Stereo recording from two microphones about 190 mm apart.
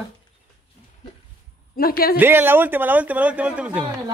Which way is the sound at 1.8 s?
50° left (ahead or behind).